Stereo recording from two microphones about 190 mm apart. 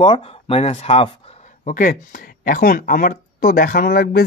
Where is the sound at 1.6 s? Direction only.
45° left (ahead or behind).